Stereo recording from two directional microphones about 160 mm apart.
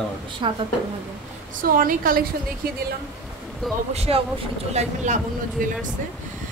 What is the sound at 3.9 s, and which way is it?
A woman's voice, 40° right (ahead or behind).